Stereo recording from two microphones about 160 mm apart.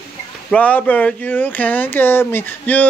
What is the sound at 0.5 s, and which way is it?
Speech, 10° left (ahead or behind).